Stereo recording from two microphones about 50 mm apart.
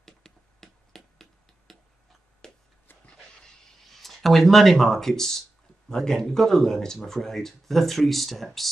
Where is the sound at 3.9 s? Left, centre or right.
Centre.